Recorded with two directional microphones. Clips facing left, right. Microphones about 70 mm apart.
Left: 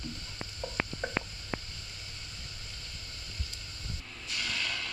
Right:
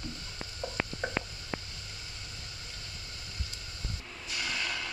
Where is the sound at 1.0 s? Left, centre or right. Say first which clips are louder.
Right 1 dB; centre.